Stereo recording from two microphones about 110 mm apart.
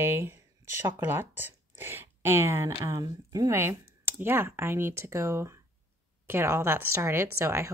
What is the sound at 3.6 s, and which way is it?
A woman's voice, 20° right (ahead or behind).